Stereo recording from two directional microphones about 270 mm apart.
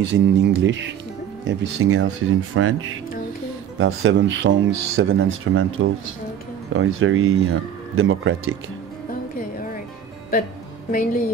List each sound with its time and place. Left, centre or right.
0.0 s speech: right
10.9 s a woman's voice: left